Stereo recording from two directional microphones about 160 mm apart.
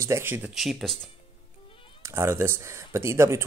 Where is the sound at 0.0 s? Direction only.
15° right (ahead or behind).